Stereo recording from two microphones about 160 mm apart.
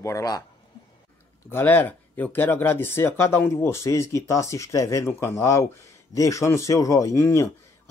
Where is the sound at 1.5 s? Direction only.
10° left (ahead or behind).